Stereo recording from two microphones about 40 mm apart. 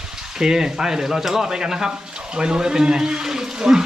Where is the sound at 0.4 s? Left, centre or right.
Centre.